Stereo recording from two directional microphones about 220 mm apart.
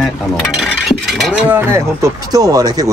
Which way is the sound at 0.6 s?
Centre (ahead or behind).